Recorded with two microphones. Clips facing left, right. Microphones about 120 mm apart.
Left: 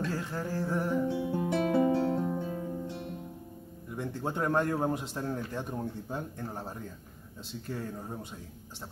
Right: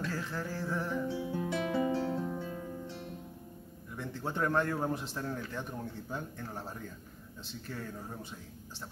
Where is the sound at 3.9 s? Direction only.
15° left (ahead or behind).